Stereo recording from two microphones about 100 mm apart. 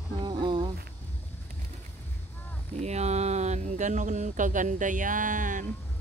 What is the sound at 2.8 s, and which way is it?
Speech, 90° right.